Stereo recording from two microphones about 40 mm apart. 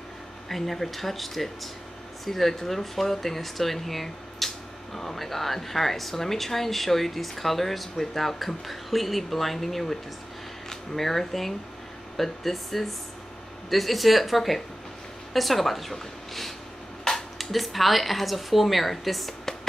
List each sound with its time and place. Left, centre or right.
0.5 s speech: centre
17.1 s a sound: centre
17.4 s speech: centre